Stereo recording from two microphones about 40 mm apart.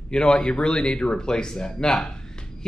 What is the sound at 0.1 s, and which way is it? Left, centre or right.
Speech, left.